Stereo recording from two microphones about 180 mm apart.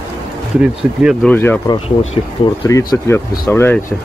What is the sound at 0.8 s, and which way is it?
Speech, 5° right (ahead or behind).